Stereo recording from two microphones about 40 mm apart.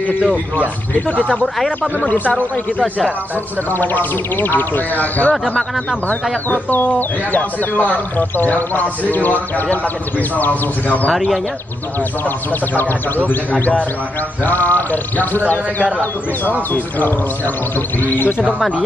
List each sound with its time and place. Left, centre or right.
2.0 s speech: left
3.7 s speech: left
6.5 s speech: left
7.0 s speech: left
12.7 s speech: left
18.0 s speech: left